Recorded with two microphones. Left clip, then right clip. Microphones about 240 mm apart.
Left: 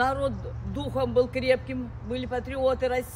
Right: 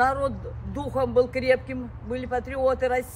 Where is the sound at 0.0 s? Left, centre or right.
Centre.